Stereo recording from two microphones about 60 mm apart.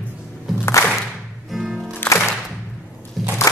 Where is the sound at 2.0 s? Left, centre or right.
Left.